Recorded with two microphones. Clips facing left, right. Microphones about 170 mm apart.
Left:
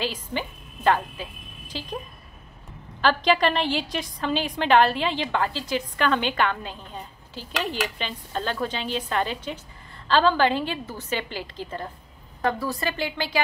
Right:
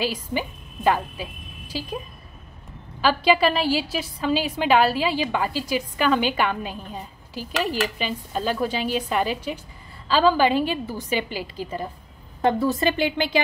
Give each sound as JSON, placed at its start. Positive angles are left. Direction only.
{"t": 0.0, "sound": "a woman's voice", "side_deg": -10}
{"t": 3.0, "sound": "a woman's voice", "side_deg": -10}
{"t": 12.4, "sound": "speech", "side_deg": -25}